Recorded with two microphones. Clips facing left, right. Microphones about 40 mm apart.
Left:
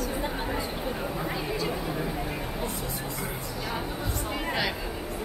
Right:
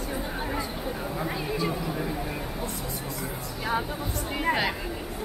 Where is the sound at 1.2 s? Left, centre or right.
Centre.